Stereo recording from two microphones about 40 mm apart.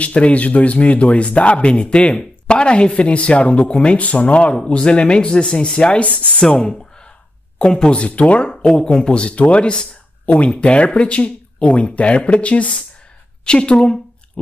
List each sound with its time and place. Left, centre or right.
0.0 s speech: left
6.5 s speech: centre
7.9 s speech: left
8.5 s speech: centre
10.2 s a woman's voice: left